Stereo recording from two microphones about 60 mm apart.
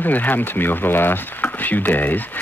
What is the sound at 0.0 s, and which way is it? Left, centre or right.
Speech, left.